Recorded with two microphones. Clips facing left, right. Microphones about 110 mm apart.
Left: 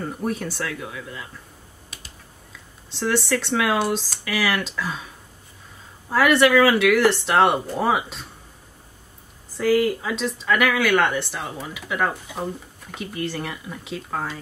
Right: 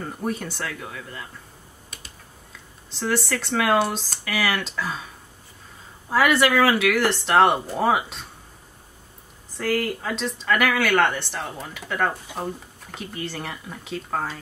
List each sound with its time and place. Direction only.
0.0 s speech: centre (ahead or behind)
2.9 s speech: centre (ahead or behind)
9.5 s speech: centre (ahead or behind)